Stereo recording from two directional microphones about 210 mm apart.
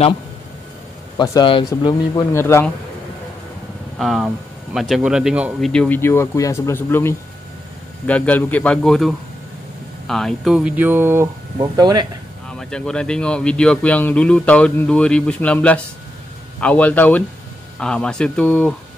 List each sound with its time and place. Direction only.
1.1 s speech: 20° left (ahead or behind)
4.0 s speech: centre (ahead or behind); by 12.1 s 20° right (ahead or behind)
12.4 s speech: 5° left (ahead or behind)